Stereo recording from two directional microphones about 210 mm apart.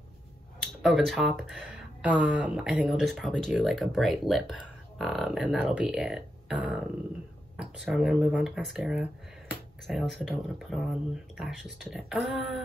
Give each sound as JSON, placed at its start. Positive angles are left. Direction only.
{"t": 0.8, "sound": "speech", "side_deg": 0}